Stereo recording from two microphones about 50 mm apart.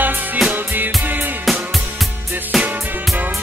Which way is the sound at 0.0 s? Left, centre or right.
Right.